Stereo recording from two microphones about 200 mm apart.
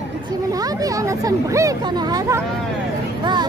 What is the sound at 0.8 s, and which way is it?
Speech, 15° right (ahead or behind).